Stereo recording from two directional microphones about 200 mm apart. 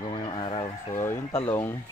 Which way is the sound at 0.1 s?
25° left (ahead or behind).